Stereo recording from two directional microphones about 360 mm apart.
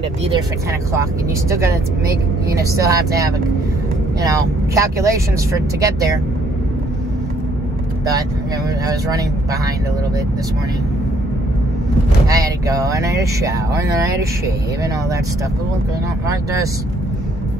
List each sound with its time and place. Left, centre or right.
1.5 s speech: centre
8.8 s speech: centre
12.3 s speech: centre